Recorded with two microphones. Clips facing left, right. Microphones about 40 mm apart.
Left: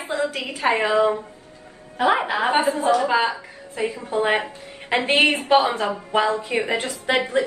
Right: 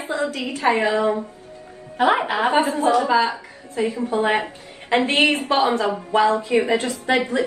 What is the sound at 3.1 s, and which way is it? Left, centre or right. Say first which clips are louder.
A woman's voice: right 2 dB; left.